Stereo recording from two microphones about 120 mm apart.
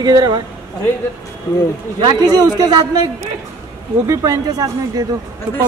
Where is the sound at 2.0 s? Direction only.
35° right (ahead or behind).